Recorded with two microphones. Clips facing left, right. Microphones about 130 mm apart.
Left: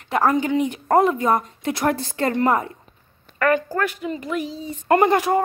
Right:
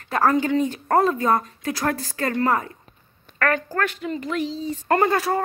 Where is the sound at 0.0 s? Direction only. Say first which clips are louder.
Left 1 dB; 15° left (ahead or behind).